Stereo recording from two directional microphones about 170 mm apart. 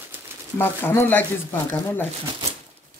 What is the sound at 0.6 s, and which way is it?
Speech, 10° left (ahead or behind).